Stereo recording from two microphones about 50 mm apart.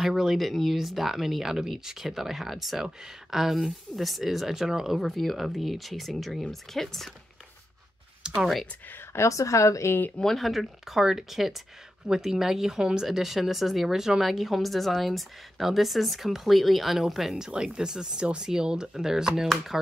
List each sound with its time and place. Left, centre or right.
0.0 s speech: centre
8.2 s computer keyboard: centre
9.1 s speech: left
10.1 s speech: centre
19.4 s speech: centre